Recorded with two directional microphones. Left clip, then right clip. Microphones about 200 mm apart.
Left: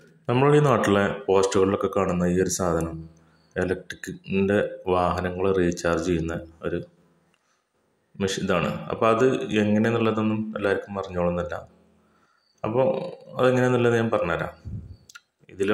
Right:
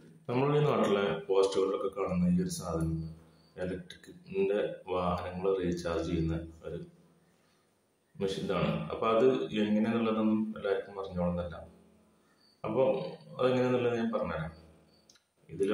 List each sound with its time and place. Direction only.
0.3 s speech: 40° left (ahead or behind)
8.2 s speech: 40° left (ahead or behind)
13.4 s speech: 40° left (ahead or behind)
15.0 s clicking: 40° left (ahead or behind)